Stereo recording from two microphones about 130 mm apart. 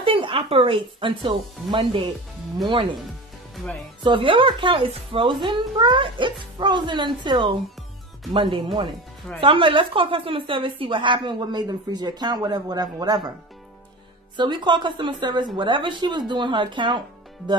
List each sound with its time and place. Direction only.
0.0 s a woman's voice: 45° right (ahead or behind)
4.0 s a woman's voice: 40° right (ahead or behind)
14.3 s a woman's voice: 35° right (ahead or behind)